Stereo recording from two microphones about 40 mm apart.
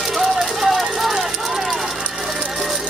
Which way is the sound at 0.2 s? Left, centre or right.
Centre.